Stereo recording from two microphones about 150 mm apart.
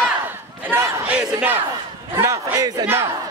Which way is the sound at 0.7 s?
10° right (ahead or behind).